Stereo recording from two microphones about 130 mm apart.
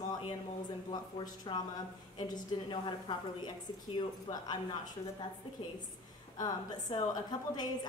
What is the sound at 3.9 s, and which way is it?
Speech, 35° left (ahead or behind).